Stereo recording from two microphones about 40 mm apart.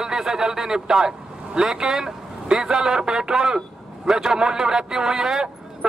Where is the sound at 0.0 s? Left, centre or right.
Centre.